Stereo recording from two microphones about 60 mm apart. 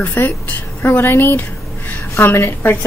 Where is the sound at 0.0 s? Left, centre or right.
Left.